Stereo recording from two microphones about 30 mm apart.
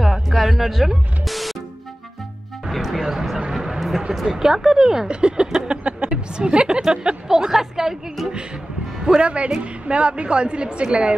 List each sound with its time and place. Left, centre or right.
0.0 s music: centre
2.7 s music: centre
3.0 s a sound: centre
4.1 s speech: centre
4.4 s speech: centre
5.1 s a woman's voice: right
5.7 s a sound: right
6.9 s speech: right
7.2 s a woman's voice: centre
9.0 s a woman's voice: right